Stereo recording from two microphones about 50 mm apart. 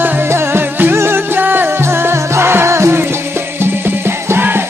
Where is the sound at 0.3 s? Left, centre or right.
Right.